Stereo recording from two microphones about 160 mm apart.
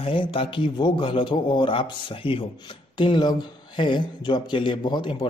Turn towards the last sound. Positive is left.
turn(degrees=30)  # may be behind; listen again after turning